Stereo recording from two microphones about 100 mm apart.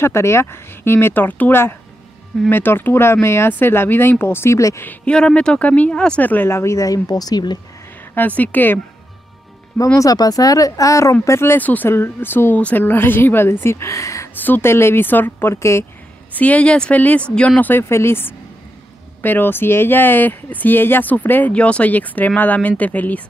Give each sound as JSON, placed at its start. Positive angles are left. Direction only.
{"t": 0.0, "sound": "speech", "side_deg": 25}
{"t": 4.8, "sound": "speech", "side_deg": 10}
{"t": 8.4, "sound": "speech", "side_deg": 20}
{"t": 9.9, "sound": "speech", "side_deg": 35}
{"t": 16.3, "sound": "speech", "side_deg": 15}